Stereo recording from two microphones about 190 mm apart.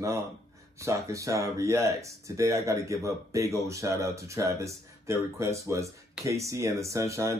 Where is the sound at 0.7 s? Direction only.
15° right (ahead or behind).